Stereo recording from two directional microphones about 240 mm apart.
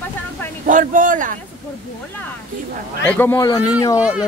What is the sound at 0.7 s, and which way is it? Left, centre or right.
Speech, right.